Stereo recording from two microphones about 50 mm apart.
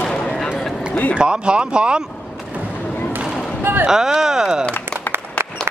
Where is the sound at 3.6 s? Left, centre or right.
Right.